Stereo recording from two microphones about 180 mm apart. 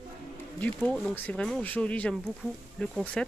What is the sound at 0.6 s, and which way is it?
Speech, 5° left (ahead or behind).